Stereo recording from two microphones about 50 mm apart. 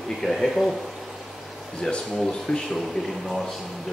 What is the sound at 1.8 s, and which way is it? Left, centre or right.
Speech, centre.